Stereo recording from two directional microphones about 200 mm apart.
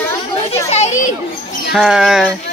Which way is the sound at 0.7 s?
35° left (ahead or behind).